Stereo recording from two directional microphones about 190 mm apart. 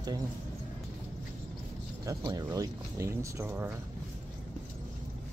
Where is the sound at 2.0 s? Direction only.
20° right (ahead or behind).